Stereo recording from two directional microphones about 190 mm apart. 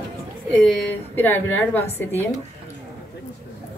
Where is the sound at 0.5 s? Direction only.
5° left (ahead or behind).